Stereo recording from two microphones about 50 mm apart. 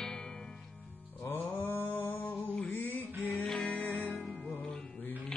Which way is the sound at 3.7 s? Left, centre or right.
Left.